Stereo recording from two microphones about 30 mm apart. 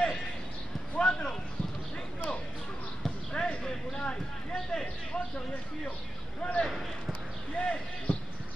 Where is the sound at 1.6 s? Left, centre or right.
Left.